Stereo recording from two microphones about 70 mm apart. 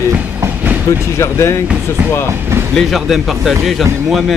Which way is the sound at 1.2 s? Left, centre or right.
Left.